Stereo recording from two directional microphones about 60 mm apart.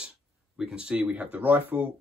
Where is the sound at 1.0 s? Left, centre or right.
Right.